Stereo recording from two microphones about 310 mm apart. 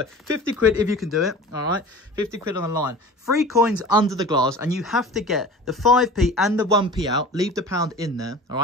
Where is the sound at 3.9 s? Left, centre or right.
Centre.